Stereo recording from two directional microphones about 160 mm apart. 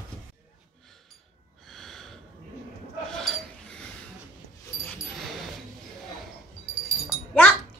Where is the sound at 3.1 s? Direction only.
5° left (ahead or behind).